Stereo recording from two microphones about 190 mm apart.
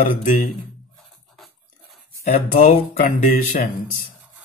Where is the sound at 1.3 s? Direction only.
Centre (ahead or behind).